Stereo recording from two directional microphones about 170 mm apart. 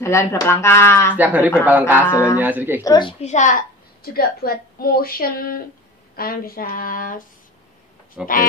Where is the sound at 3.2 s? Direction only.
45° left (ahead or behind).